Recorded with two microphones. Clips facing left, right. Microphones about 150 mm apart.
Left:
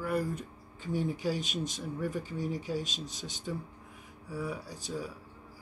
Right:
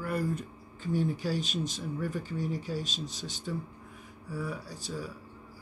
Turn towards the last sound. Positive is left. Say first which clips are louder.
# even
turn(degrees=20)  # may be behind; listen again after turning